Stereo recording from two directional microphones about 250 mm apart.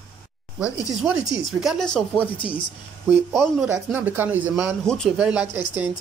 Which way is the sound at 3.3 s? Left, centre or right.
Centre.